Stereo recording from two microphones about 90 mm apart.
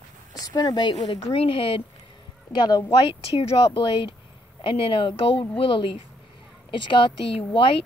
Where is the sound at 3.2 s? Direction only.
85° left; by 4.1 s 65° left (ahead or behind).